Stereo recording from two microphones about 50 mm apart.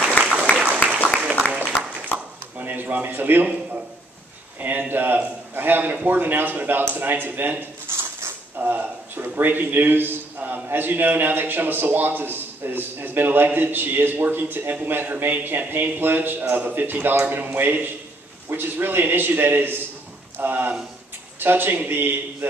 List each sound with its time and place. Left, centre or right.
0.2 s applause: right
2.6 s a man's voice: right
4.6 s a man's voice: right
8.5 s a man's voice: right